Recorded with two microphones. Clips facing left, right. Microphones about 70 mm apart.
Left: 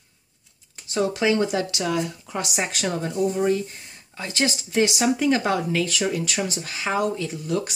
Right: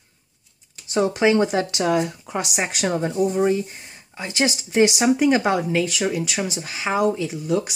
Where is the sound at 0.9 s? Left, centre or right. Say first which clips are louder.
Right 3 dB; right.